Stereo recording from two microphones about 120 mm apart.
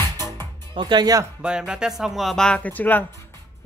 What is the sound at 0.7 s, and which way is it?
Speech, 40° right (ahead or behind).